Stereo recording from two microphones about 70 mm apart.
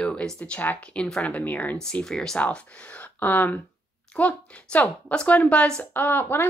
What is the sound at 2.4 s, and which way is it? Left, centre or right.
Speech, centre.